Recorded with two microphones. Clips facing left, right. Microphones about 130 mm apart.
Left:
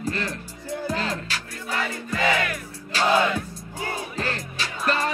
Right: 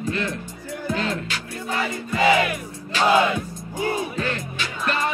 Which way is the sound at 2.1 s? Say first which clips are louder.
Right 5 dB; 15° right (ahead or behind).